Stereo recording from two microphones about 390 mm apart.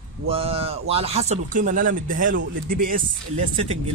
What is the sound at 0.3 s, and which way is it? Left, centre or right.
Speech, centre.